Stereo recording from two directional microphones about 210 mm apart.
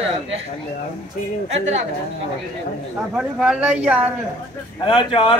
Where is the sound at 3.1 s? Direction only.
5° right (ahead or behind).